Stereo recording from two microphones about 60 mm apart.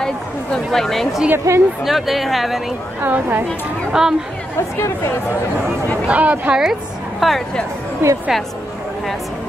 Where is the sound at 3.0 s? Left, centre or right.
Right.